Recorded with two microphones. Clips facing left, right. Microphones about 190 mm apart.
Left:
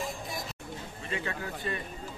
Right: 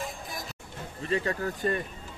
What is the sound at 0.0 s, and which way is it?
Vehicle, centre (ahead or behind).